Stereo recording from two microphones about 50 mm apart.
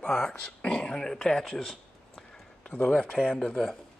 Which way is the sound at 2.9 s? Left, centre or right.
Centre.